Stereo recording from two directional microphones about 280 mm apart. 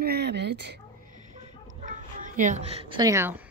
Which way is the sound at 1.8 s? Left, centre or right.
Right.